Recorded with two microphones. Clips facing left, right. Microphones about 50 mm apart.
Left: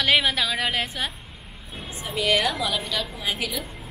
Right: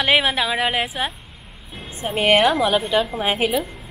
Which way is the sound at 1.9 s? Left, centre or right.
Right.